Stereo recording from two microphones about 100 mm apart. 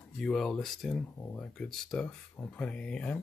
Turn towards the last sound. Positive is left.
turn(degrees=10)  # may be behind; listen again after turning